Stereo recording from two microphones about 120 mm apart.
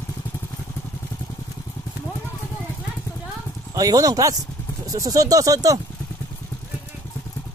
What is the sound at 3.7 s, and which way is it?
Speech, 30° right (ahead or behind).